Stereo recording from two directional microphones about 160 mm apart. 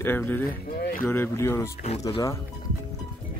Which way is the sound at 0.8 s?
60° left (ahead or behind).